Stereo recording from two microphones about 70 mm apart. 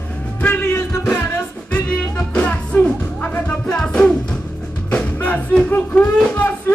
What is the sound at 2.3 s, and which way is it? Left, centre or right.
Music, centre.